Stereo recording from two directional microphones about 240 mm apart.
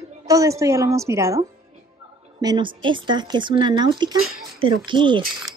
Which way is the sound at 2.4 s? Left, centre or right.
Centre.